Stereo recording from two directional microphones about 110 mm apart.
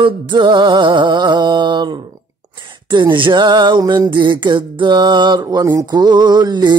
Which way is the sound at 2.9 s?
45° right (ahead or behind).